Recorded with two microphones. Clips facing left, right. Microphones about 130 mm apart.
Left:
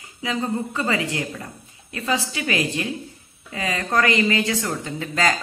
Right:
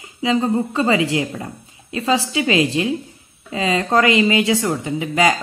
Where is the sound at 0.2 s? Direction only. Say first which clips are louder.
Right 7 dB; 25° right (ahead or behind).